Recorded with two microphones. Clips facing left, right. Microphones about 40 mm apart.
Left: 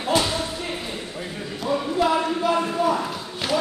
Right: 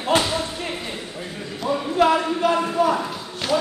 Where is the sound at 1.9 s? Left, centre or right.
Right.